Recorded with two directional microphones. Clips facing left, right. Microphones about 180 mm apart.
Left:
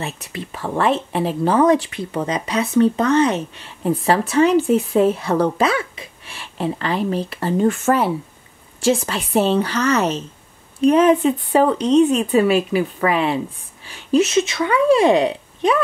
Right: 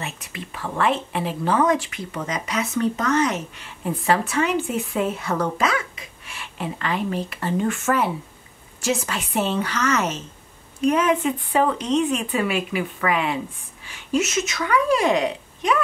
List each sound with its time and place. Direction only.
0.0 s speech: 35° left (ahead or behind)